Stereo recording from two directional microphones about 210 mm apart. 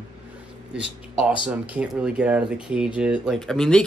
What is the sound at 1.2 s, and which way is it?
Speech, 25° left (ahead or behind).